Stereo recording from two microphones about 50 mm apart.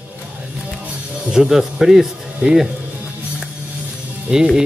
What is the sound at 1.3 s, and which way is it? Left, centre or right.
Speech, centre.